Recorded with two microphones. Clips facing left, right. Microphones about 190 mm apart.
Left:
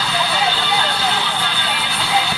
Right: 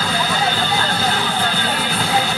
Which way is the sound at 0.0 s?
45° right (ahead or behind).